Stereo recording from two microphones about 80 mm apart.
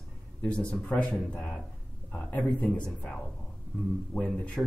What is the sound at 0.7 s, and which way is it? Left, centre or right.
Speech, centre.